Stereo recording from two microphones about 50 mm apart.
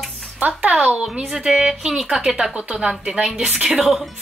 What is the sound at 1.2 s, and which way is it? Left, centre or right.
Speech, centre.